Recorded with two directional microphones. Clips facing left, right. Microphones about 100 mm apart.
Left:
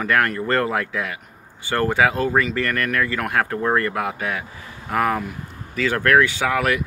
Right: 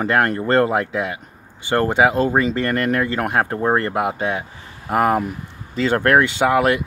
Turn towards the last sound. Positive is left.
turn(degrees=-25)  # may be behind; listen again after turning